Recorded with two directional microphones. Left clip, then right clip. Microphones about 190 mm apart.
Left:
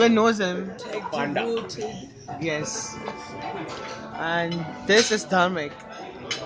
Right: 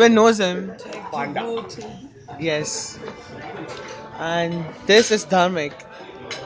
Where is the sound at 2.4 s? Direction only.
20° right (ahead or behind).